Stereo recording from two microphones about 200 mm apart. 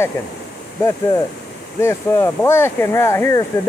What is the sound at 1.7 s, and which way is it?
Speech, 15° left (ahead or behind).